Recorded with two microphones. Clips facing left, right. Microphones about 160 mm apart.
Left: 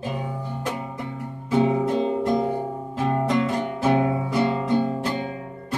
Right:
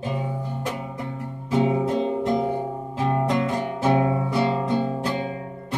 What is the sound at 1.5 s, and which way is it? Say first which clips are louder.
Music: left 1 dB; 20° right (ahead or behind).